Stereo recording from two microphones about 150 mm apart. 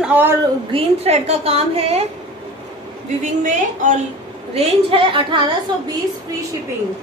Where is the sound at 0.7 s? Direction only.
45° right (ahead or behind).